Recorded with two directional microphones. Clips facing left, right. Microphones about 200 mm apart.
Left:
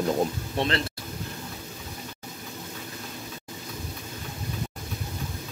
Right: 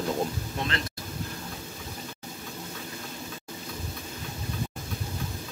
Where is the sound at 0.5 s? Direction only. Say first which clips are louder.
Left 8 dB; 30° left (ahead or behind).